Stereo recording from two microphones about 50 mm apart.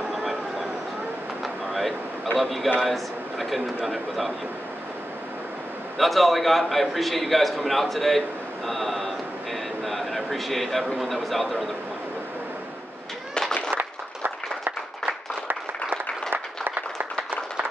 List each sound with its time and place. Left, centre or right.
0.1 s a sound: centre
2.3 s a man's voice: centre
5.9 s a man's voice: centre
13.7 s applause: right
15.4 s applause: right